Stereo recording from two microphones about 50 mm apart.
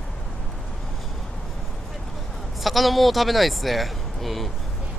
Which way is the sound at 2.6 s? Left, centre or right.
Centre.